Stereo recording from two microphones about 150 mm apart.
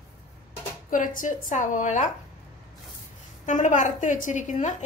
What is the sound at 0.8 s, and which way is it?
A woman's voice, 65° left (ahead or behind).